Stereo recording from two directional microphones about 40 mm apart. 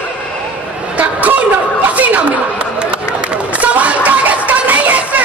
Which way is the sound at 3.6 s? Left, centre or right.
Right.